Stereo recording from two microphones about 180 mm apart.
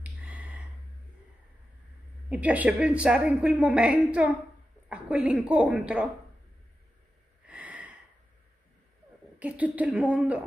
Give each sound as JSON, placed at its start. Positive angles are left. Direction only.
{"t": 0.0, "sound": "a sound", "side_deg": -5}
{"t": 2.2, "sound": "a woman's voice", "side_deg": -5}
{"t": 7.4, "sound": "snort", "side_deg": -10}
{"t": 9.4, "sound": "a woman's voice", "side_deg": -10}